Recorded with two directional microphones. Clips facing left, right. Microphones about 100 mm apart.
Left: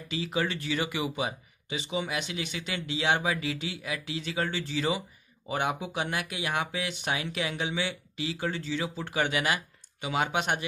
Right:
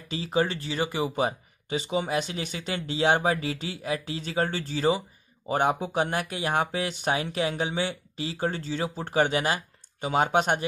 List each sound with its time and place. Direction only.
0.1 s speech: 35° right (ahead or behind)